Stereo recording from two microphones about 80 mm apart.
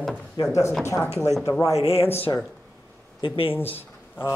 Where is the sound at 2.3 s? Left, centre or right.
Left.